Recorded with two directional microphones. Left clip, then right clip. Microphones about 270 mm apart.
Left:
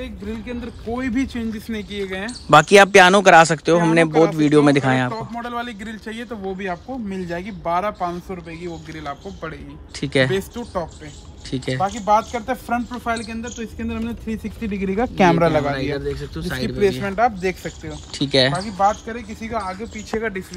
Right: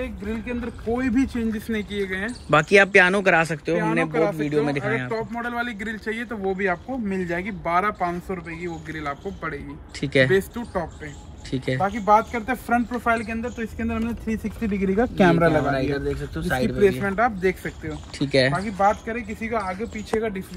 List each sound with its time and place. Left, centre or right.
0.0 s speech: centre
1.5 s speech: centre
15.1 s speech: left
15.5 s speech: centre
17.0 s speech: left
18.2 s speech: centre
20.1 s speech: centre